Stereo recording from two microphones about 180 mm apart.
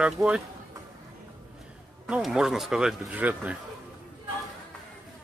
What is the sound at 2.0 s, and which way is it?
Speech, 5° right (ahead or behind).